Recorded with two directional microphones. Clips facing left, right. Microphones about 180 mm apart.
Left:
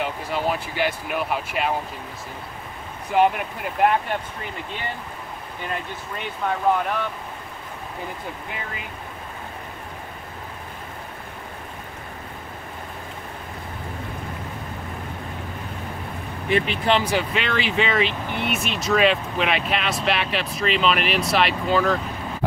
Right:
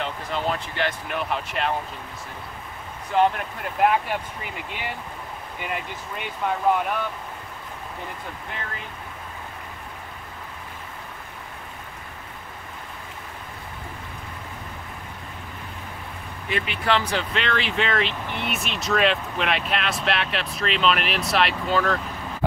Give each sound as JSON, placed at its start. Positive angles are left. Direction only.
{"t": 0.0, "sound": "speech", "side_deg": 10}
{"t": 3.1, "sound": "speech", "side_deg": 10}
{"t": 3.8, "sound": "speech", "side_deg": -5}
{"t": 6.4, "sound": "speech", "side_deg": -5}
{"t": 16.4, "sound": "speech", "side_deg": 40}
{"t": 16.8, "sound": "speech", "side_deg": 15}